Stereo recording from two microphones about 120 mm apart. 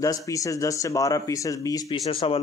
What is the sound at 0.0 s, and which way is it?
Speech, 25° left (ahead or behind).